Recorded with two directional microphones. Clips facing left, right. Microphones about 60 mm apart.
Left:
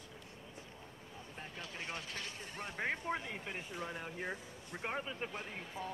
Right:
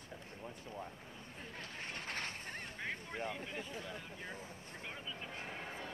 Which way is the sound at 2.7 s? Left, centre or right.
Left.